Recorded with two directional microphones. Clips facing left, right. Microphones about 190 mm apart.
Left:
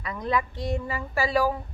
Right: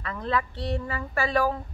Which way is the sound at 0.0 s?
15° left (ahead or behind).